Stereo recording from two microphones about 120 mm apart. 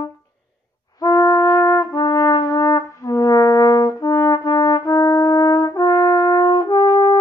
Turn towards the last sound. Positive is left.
turn(degrees=30)  # may be behind; listen again after turning